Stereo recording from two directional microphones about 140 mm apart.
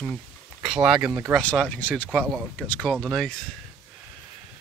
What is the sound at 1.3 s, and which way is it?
Speech, 5° left (ahead or behind).